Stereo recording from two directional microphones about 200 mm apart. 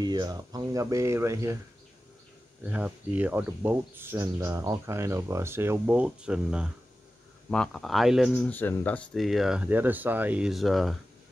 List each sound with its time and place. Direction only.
0.0 s speech: 20° right (ahead or behind)
2.7 s speech: 10° right (ahead or behind)